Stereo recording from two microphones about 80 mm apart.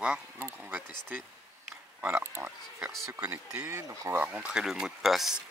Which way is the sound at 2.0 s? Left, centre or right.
Right.